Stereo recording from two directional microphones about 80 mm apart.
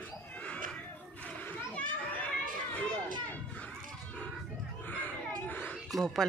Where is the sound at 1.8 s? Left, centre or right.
Centre.